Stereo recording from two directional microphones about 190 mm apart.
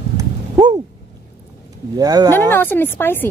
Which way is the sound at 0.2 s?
20° right (ahead or behind).